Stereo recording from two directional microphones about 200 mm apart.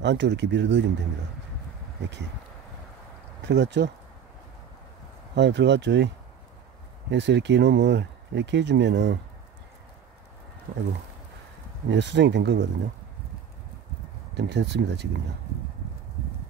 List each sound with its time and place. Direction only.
0.0 s speech: 60° right (ahead or behind)
3.4 s speech: 60° right (ahead or behind)
5.3 s speech: 60° right (ahead or behind)
7.1 s speech: 60° right (ahead or behind)
11.9 s speech: 60° right (ahead or behind)
14.3 s speech: 60° right (ahead or behind)